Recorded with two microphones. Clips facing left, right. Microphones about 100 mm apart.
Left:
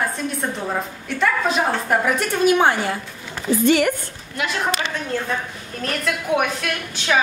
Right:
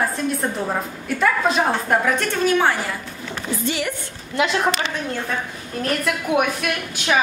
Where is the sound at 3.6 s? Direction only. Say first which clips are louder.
Left 9 dB; 55° left (ahead or behind).